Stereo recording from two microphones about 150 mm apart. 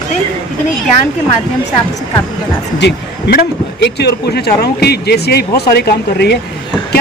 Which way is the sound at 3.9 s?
90° left.